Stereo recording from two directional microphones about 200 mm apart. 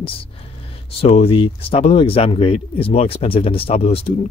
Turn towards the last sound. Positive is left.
turn(degrees=30)  # may be behind; listen again after turning